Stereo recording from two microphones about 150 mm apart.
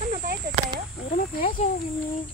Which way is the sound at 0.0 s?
65° right (ahead or behind).